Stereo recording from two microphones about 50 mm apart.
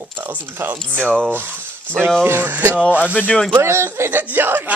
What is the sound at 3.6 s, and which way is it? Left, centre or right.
Speech, right.